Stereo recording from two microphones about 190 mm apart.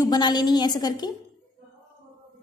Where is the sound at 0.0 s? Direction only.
20° left (ahead or behind).